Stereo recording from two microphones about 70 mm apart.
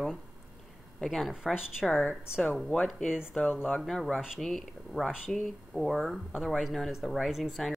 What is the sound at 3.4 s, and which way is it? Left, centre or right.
Speech, left.